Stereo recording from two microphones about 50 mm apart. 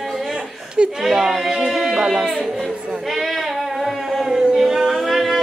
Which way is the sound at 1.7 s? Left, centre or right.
Centre.